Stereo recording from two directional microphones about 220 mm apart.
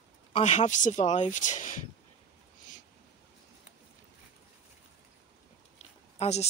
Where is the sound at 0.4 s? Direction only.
30° left (ahead or behind).